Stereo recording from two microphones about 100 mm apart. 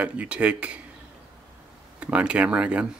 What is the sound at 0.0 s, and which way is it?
Speech, 15° right (ahead or behind).